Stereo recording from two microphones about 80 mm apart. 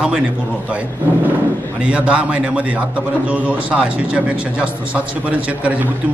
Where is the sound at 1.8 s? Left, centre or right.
Centre.